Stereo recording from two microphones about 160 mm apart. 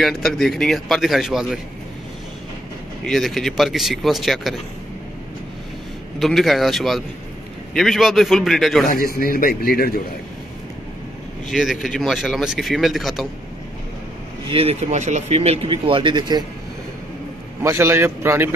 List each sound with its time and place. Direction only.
0.0 s speech: centre (ahead or behind)
3.1 s speech: centre (ahead or behind)
6.1 s speech: centre (ahead or behind)
8.9 s speech: 65° left (ahead or behind)
11.4 s speech: centre (ahead or behind)
14.5 s speech: 40° right (ahead or behind)
17.6 s a man's voice: 15° right (ahead or behind)